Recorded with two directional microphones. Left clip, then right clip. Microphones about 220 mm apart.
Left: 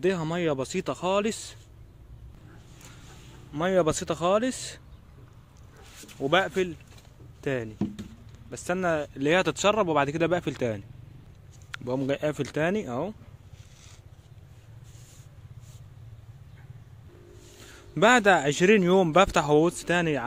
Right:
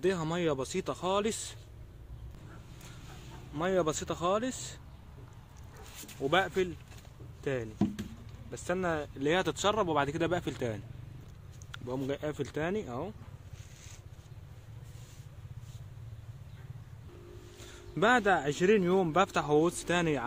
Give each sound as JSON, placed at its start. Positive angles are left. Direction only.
{"t": 0.0, "sound": "a man's voice", "side_deg": 30}
{"t": 3.5, "sound": "a man's voice", "side_deg": 35}
{"t": 6.2, "sound": "a man's voice", "side_deg": 45}
{"t": 17.6, "sound": "a man's voice", "side_deg": 30}